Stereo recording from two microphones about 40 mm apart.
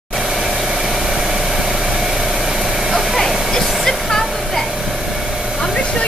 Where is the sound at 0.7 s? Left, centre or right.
Centre.